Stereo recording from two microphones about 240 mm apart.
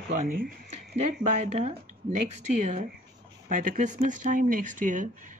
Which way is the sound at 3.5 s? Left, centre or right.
Right.